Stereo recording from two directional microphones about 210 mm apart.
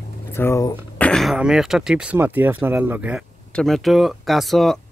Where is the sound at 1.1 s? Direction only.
Centre (ahead or behind).